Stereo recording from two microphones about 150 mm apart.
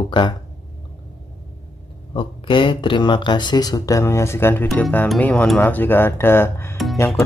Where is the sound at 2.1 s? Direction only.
35° left (ahead or behind).